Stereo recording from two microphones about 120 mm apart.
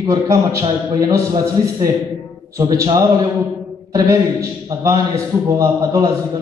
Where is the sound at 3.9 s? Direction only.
30° right (ahead or behind).